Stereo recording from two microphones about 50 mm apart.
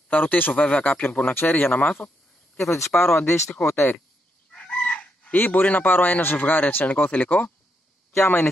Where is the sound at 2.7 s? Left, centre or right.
Left.